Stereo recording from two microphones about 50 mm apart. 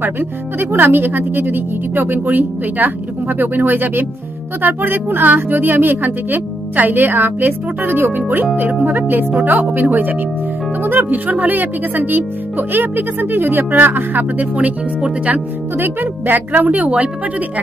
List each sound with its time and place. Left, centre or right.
0.0 s speech: right